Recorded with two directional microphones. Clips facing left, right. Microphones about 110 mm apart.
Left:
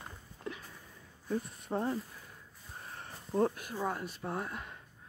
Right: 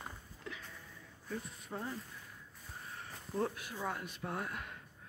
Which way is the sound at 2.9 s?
35° left (ahead or behind).